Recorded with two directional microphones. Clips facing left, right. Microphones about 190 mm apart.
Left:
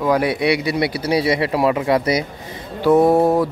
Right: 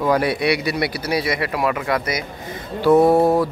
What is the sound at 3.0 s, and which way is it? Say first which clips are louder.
Speech: left 1 dB; 20° left (ahead or behind).